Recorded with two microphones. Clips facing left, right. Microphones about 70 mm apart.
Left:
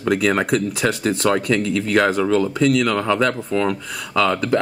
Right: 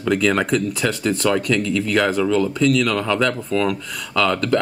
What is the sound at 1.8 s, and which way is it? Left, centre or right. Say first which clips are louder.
Speech: left 2 dB; left.